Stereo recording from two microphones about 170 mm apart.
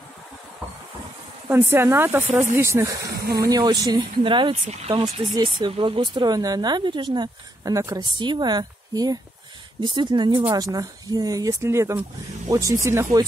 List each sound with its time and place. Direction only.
1.5 s speech: 15° right (ahead or behind)
3.1 s speech: 65° right (ahead or behind)
3.4 s speech: 20° right (ahead or behind)